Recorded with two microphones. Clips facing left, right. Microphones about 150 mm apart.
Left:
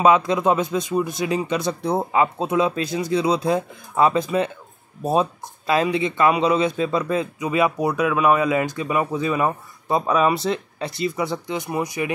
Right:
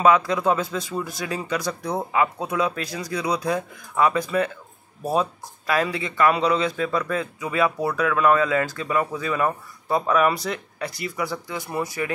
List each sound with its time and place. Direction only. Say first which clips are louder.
0.0 s speech: left 2 dB; 20° left (ahead or behind)